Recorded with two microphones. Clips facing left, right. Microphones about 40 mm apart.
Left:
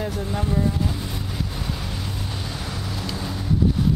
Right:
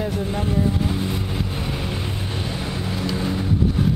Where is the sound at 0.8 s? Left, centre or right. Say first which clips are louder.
Right 5 dB; right.